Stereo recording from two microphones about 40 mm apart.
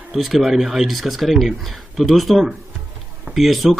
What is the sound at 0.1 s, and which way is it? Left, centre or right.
Speech, centre.